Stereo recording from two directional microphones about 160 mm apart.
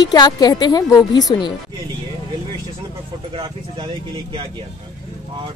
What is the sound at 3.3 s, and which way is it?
Speech, 35° right (ahead or behind).